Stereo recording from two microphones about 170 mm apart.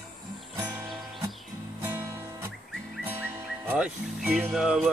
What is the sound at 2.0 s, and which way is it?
Music, 15° right (ahead or behind).